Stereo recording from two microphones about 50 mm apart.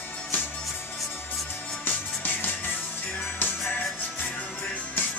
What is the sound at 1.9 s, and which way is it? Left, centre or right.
Music, left.